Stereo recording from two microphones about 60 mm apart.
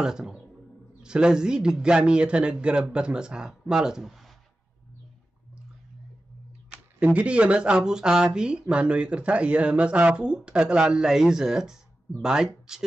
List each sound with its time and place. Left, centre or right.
0.0 s speech: centre
7.2 s speech: right